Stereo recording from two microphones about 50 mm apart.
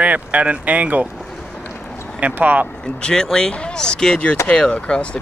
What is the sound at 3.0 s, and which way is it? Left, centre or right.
Speech, centre.